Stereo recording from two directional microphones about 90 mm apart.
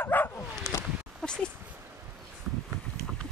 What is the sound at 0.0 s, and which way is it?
Bow-wow, 20° left (ahead or behind).